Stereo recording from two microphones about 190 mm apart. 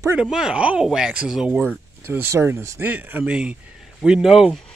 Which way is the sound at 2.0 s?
10° right (ahead or behind).